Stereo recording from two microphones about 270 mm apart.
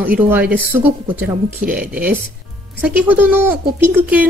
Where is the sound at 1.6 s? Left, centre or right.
Right.